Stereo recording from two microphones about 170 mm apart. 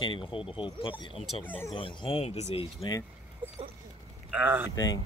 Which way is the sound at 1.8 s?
30° left (ahead or behind).